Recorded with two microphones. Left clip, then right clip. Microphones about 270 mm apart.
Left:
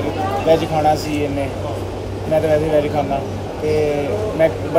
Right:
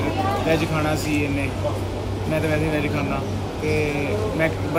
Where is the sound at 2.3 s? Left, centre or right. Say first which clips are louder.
Left 8 dB; centre.